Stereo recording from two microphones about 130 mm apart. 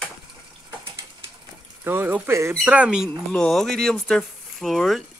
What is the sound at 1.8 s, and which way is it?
Speech, 15° right (ahead or behind).